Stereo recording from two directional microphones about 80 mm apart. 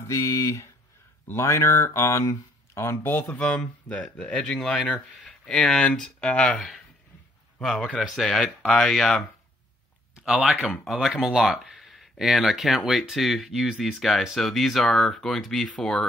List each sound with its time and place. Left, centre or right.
0.0 s speech: left; by 4.4 s centre
4.4 s speech: centre
6.5 s speech: centre
10.2 s speech: centre